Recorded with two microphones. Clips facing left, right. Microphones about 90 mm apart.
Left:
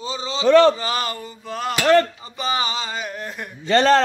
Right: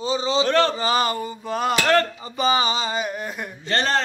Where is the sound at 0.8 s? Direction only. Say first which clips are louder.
Right 4 dB; 10° right (ahead or behind).